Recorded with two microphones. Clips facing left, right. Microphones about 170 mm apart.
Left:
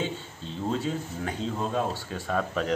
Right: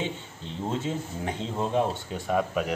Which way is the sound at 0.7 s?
20° right (ahead or behind).